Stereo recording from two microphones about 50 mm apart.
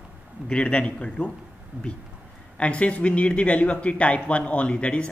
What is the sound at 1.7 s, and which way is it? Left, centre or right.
Speech, right.